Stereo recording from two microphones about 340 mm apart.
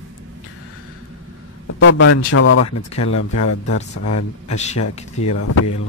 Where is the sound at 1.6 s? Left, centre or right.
Left.